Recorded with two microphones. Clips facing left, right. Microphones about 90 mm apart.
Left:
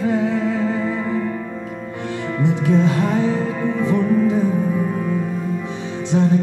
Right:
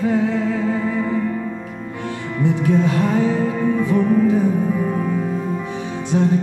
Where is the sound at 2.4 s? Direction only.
20° left (ahead or behind).